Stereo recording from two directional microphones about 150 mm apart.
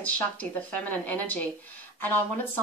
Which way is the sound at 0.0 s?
10° left (ahead or behind).